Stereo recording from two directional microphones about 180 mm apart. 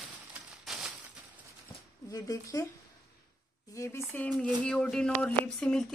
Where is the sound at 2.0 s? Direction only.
20° left (ahead or behind).